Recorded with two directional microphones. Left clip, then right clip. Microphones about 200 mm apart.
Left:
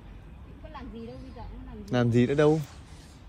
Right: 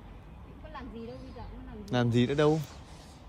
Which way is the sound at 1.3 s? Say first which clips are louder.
Left 1 dB; 5° right (ahead or behind).